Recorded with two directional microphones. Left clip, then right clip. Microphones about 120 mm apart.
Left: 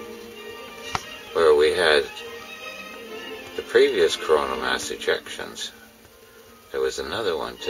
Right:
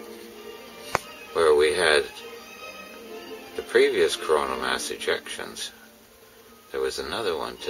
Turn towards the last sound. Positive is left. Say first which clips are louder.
# left 2 dB
turn(degrees=-5)  # may be behind; listen again after turning